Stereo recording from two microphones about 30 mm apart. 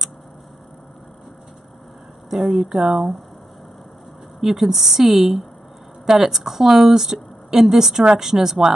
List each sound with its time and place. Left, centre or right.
2.2 s a woman's voice: centre
4.4 s a woman's voice: centre